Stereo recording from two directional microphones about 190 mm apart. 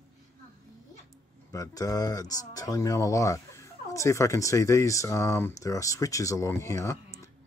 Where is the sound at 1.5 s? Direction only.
20° left (ahead or behind).